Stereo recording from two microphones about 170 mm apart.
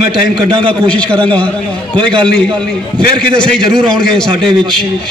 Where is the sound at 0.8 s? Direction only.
5° left (ahead or behind).